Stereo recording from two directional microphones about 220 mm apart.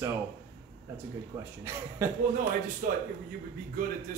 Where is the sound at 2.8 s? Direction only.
40° right (ahead or behind).